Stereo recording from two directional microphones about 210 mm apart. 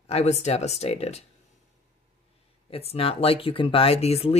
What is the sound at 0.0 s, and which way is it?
Speech, 30° left (ahead or behind).